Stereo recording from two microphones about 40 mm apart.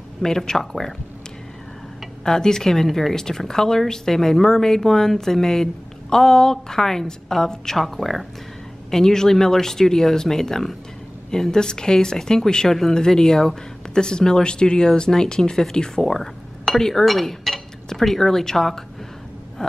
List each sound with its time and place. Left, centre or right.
0.2 s speech: centre
2.2 s speech: centre
8.9 s speech: centre
19.6 s a sound: centre